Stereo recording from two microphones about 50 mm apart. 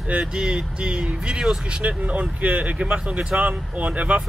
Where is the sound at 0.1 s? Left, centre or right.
Centre.